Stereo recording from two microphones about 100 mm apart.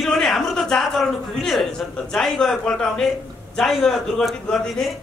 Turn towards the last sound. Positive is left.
turn(degrees=5)  # may be behind; listen again after turning